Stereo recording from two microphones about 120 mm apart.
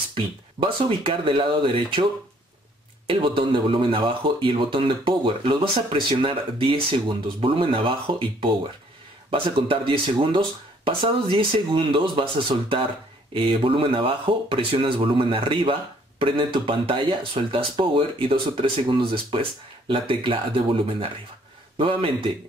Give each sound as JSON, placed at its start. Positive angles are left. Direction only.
{"t": 0.1, "sound": "speech", "side_deg": -45}
{"t": 3.1, "sound": "speech", "side_deg": -45}